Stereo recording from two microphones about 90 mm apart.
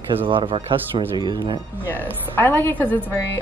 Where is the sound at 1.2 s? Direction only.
55° right (ahead or behind).